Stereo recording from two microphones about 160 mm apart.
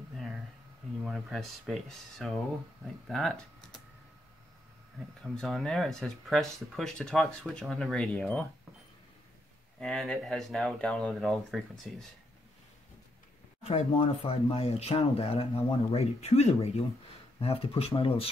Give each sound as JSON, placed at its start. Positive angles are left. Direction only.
{"t": 1.0, "sound": "speech", "side_deg": 0}
{"t": 5.2, "sound": "speech", "side_deg": 0}
{"t": 9.8, "sound": "speech", "side_deg": 0}
{"t": 13.7, "sound": "speech", "side_deg": 40}